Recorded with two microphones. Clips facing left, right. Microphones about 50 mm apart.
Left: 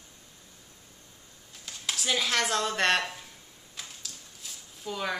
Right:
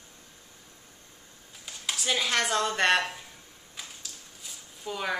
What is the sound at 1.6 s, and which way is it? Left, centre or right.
Speech, centre.